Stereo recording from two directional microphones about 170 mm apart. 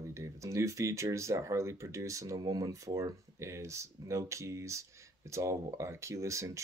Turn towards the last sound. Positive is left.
turn(degrees=-20)  # may be behind; listen again after turning